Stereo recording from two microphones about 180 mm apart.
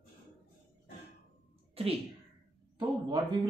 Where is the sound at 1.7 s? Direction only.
30° right (ahead or behind).